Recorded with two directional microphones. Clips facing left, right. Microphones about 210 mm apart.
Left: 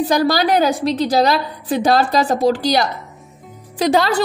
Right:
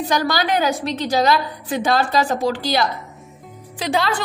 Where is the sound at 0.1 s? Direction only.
35° left (ahead or behind).